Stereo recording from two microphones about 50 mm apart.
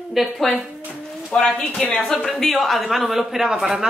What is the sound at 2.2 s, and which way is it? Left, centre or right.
A man's voice, centre.